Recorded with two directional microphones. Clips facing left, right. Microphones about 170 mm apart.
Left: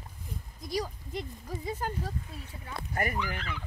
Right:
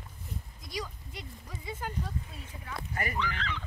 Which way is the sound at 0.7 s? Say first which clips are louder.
Left 6 dB; 40° left (ahead or behind).